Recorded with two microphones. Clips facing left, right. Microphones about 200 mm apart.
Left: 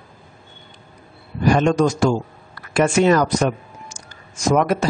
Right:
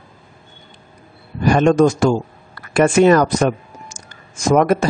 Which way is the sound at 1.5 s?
50° right (ahead or behind).